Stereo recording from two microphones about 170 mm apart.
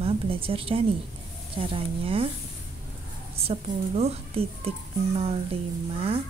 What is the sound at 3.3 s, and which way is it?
A woman's voice, 35° right (ahead or behind).